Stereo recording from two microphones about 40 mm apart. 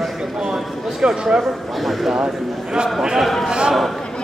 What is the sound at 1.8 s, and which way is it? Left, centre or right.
Speech, centre.